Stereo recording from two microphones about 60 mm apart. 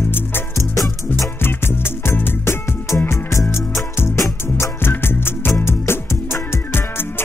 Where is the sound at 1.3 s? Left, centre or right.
Left.